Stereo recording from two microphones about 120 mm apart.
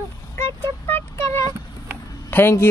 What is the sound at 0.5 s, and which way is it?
Vehicle, 20° left (ahead or behind).